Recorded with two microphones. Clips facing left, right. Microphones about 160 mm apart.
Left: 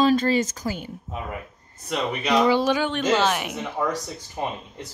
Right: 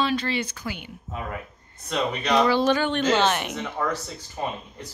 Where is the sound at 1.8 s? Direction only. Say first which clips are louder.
Even; 10° left (ahead or behind).